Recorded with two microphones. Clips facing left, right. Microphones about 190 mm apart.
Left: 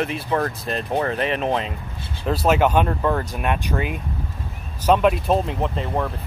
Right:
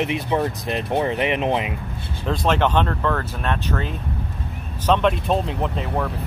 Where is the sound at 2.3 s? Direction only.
5° left (ahead or behind).